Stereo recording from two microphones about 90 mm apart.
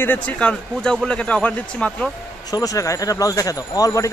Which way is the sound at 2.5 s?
40° left (ahead or behind).